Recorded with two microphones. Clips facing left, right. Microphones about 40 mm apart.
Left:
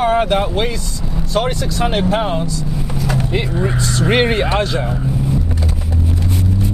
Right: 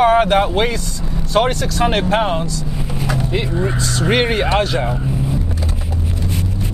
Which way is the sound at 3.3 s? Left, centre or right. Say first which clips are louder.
Left 1 dB; centre.